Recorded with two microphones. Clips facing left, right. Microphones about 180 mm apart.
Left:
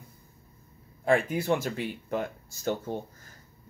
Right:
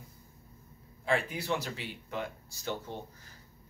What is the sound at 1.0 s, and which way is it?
Speech, 50° left (ahead or behind).